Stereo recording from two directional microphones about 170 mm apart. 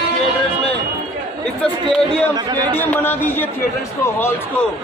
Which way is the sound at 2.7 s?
10° left (ahead or behind).